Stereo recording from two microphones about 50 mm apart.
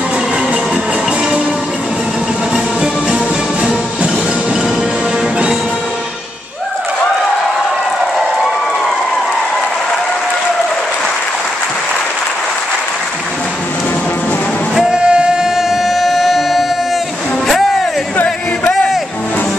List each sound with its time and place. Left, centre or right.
2.5 s music: centre
15.0 s music: centre
18.1 s music: left